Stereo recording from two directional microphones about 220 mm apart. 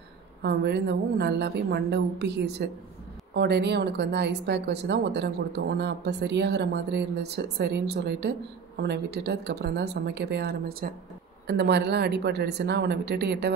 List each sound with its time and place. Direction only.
0.4 s a woman's voice: 50° right (ahead or behind)